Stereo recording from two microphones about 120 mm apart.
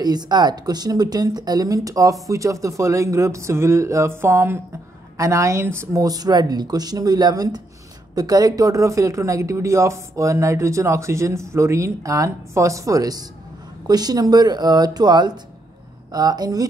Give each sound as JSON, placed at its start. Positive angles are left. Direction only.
{"t": 0.0, "sound": "a woman's voice", "side_deg": -35}